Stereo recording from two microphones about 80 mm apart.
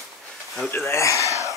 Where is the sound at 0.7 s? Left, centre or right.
Left.